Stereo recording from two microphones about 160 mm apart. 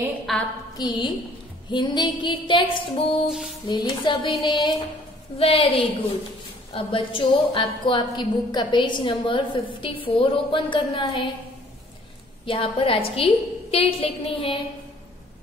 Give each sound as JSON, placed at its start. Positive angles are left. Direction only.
{"t": 0.3, "sound": "a woman's voice", "side_deg": 0}
{"t": 0.7, "sound": "music", "side_deg": 25}
{"t": 1.7, "sound": "a woman's voice", "side_deg": 30}
{"t": 3.6, "sound": "music", "side_deg": 25}
{"t": 5.4, "sound": "a woman's voice", "side_deg": 35}
{"t": 12.4, "sound": "a woman's voice", "side_deg": 35}